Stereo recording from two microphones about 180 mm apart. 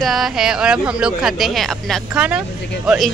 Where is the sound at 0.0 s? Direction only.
Centre (ahead or behind).